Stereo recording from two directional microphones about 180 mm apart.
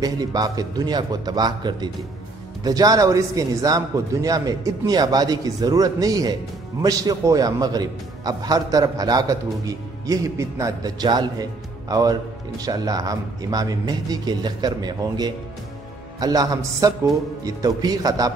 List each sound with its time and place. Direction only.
0.0 s a man's voice: 20° right (ahead or behind)